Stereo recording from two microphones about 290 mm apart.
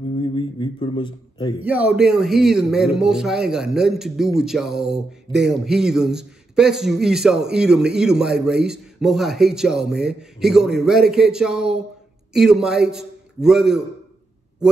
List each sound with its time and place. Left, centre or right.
0.2 s a man's voice: centre
1.6 s speech: centre